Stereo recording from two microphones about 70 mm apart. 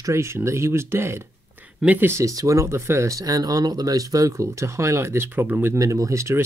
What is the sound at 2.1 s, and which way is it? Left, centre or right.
Speech, right.